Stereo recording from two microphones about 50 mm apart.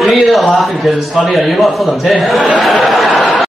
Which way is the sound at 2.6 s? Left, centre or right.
Centre.